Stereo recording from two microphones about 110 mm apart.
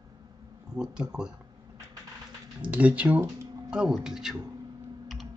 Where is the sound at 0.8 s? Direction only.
40° right (ahead or behind).